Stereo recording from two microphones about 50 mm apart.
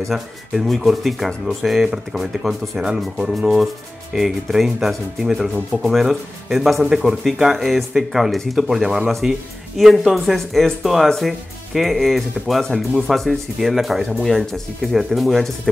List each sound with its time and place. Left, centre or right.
0.7 s speech: centre
2.8 s speech: centre
3.3 s speech: centre
14.8 s speech: centre